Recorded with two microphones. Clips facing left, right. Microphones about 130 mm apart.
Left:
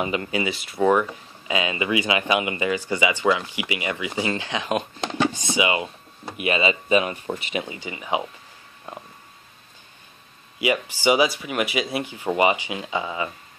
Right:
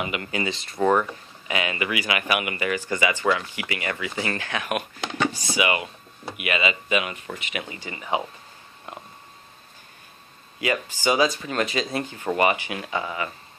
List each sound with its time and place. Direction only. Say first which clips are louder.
0.0 s speech: left 4 dB; 30° left (ahead or behind)
0.3 s speech: left 2 dB; 10° left (ahead or behind)
1.5 s speech: left 3 dB; 20° left (ahead or behind)
5.1 s a sound: left 2 dB; 25° left (ahead or behind)
6.3 s speech: left 3 dB; 30° left (ahead or behind)
7.6 s speech: left 2 dB; 15° left (ahead or behind)
11.1 s speech: left 2 dB; 15° left (ahead or behind)